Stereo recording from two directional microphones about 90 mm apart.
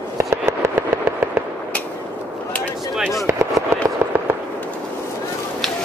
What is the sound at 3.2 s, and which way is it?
Speech, 35° right (ahead or behind).